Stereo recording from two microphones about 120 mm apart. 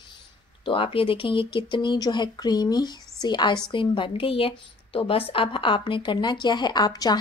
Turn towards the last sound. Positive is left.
turn(degrees=35)  # may be behind; listen again after turning